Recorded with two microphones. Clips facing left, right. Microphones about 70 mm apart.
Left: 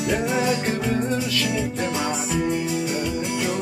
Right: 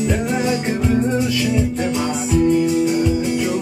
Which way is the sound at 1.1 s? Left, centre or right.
Centre.